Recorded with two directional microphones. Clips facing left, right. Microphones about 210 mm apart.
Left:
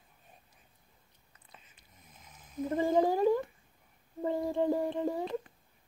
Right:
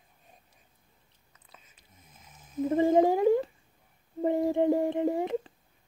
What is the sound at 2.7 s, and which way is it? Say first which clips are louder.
Cat: right 5 dB; 25° right (ahead or behind).